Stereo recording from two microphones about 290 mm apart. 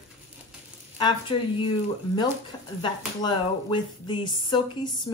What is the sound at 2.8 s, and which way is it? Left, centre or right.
Speech, centre.